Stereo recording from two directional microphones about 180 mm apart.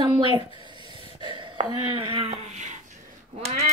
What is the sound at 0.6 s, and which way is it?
Gasp, 25° right (ahead or behind).